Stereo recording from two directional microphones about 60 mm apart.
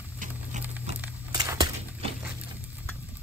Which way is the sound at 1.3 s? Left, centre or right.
Right.